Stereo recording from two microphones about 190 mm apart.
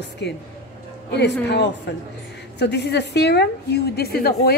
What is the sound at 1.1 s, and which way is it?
A woman's voice, 65° left (ahead or behind).